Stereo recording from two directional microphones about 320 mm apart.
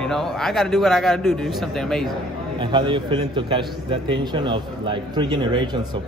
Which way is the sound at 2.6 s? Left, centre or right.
Centre.